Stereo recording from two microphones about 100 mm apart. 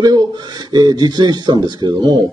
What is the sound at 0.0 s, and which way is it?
Speech, 45° right (ahead or behind).